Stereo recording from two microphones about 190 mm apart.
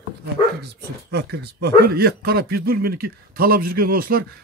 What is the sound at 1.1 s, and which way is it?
A man's voice, 60° right (ahead or behind).